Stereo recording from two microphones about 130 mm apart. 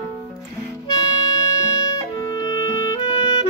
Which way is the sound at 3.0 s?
40° left (ahead or behind).